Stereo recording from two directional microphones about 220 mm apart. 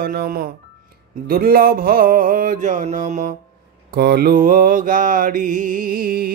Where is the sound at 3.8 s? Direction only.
45° right (ahead or behind).